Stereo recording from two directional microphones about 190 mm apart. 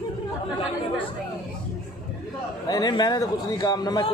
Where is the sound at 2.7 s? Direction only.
20° left (ahead or behind).